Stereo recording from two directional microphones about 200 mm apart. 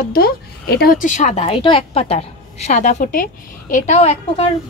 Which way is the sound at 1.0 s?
35° left (ahead or behind).